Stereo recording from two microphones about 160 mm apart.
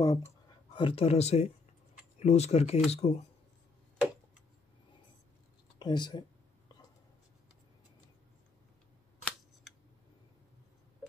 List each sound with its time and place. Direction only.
0.0 s speech: 25° left (ahead or behind)
0.7 s speech: 35° left (ahead or behind)
5.8 s speech: 30° left (ahead or behind)